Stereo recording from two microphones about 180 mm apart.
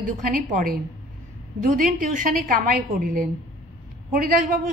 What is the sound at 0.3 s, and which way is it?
A woman's voice, 50° right (ahead or behind).